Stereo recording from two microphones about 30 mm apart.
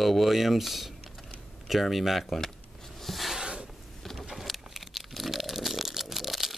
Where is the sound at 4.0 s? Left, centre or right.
Centre.